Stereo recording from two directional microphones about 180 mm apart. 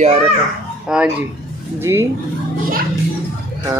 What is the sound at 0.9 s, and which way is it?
A man's voice, 5° right (ahead or behind).